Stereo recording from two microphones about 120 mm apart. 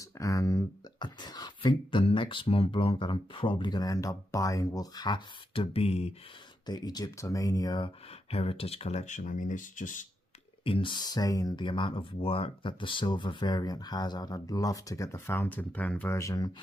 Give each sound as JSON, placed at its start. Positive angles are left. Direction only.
{"t": 0.2, "sound": "speech", "side_deg": 25}
{"t": 6.6, "sound": "speech", "side_deg": 35}
{"t": 7.8, "sound": "speech", "side_deg": 55}
{"t": 10.6, "sound": "speech", "side_deg": 45}
{"t": 16.2, "sound": "speech", "side_deg": 30}